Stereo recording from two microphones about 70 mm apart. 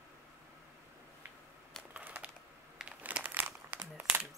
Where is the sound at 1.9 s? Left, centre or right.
Right.